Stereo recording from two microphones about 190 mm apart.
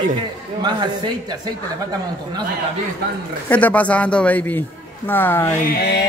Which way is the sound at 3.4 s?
10° left (ahead or behind).